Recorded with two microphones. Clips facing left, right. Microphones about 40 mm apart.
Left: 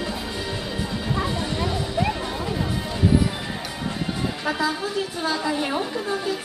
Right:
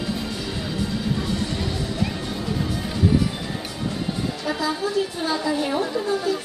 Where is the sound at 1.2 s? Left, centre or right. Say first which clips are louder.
Left 1 dB; centre.